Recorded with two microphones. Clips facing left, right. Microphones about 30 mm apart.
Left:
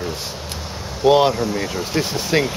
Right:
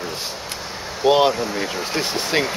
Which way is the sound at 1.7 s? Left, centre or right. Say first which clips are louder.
Left 1 dB; right.